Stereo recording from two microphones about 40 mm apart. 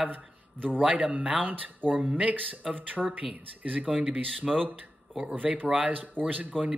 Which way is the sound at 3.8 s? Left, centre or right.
Right.